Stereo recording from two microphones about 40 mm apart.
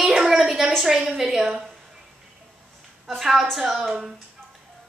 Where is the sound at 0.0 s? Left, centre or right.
Centre.